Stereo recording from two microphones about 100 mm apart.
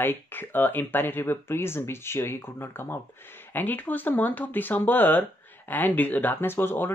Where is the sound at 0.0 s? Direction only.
20° left (ahead or behind).